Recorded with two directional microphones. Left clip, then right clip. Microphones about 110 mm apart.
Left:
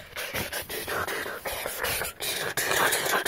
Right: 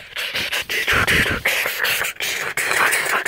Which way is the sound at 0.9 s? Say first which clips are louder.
Right 14 dB; 55° right (ahead or behind).